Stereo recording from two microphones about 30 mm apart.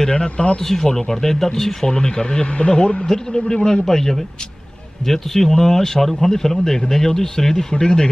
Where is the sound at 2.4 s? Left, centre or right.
Left.